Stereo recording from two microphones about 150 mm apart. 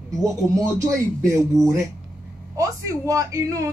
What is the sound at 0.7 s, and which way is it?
Speech, 20° right (ahead or behind).